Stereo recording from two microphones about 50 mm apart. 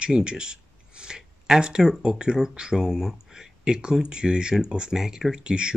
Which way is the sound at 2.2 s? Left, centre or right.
Centre.